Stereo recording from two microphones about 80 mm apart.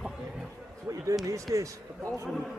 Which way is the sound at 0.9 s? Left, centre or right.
Right.